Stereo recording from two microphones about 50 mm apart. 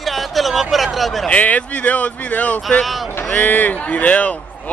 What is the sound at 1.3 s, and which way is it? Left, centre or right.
A man's voice, left.